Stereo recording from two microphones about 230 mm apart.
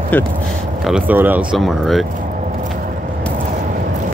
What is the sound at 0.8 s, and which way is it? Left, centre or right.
Speech, centre.